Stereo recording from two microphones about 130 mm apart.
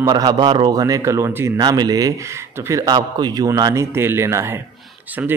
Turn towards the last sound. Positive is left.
turn(degrees=-20)  # may be behind; listen again after turning